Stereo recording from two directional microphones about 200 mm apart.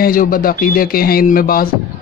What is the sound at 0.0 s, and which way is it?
Speech, 45° left (ahead or behind).